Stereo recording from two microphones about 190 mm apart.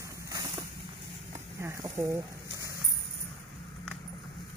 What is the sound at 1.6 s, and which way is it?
Speech, 15° right (ahead or behind).